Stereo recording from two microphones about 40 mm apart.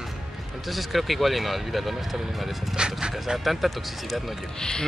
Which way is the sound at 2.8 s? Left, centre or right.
Right.